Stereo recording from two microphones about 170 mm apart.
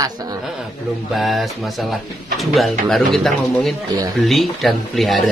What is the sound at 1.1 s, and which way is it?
Speech, centre (ahead or behind).